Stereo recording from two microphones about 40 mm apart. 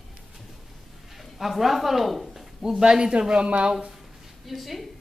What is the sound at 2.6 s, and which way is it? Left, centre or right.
Speech, centre.